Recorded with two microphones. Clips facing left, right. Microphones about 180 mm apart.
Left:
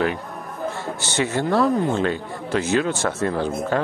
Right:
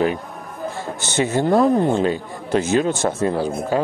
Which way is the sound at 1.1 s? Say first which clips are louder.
Right 4 dB; 20° right (ahead or behind).